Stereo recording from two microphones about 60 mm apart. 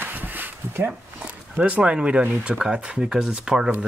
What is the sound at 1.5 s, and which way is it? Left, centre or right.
Speech, centre.